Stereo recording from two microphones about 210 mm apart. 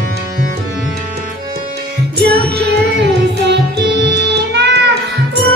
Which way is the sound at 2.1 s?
50° right (ahead or behind).